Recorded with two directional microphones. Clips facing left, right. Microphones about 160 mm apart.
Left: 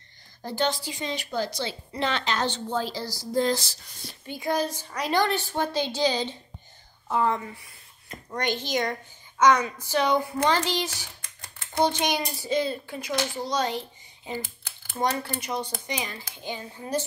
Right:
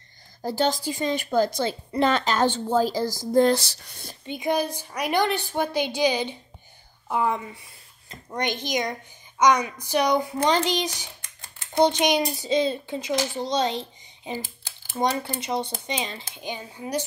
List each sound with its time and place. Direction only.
0.4 s a woman's voice: 35° right (ahead or behind); by 4.1 s 65° right (ahead or behind)
4.3 s a woman's voice: 20° right (ahead or behind)